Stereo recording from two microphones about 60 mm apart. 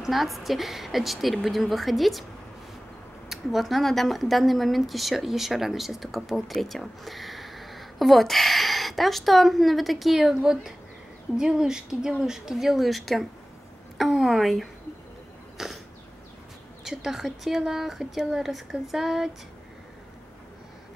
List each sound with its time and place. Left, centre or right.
0.0 s a woman's voice: centre
3.3 s a woman's voice: centre
15.5 s a sound: centre
16.8 s speech: centre